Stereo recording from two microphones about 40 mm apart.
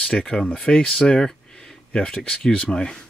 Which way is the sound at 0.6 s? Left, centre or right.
Left.